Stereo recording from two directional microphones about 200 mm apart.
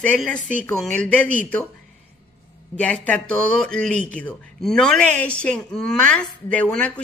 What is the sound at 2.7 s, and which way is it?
A woman's voice, 5° left (ahead or behind).